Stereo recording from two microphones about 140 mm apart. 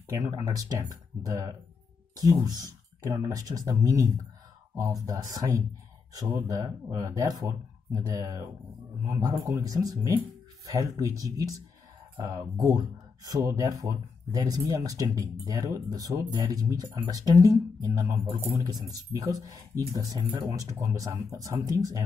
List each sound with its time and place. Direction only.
0.1 s speech: 20° right (ahead or behind)